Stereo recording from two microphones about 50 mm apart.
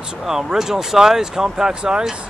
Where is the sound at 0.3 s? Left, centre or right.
Centre.